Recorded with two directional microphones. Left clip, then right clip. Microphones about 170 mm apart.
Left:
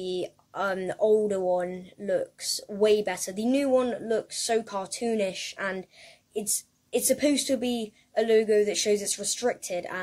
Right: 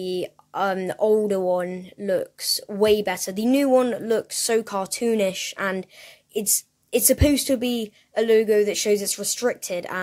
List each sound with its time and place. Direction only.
0.0 s speech: 30° right (ahead or behind)